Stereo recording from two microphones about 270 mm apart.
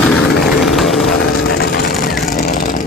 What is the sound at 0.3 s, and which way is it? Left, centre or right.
Vehicle, centre.